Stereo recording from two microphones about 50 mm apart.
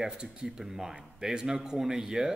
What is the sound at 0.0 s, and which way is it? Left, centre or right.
A man's voice, centre.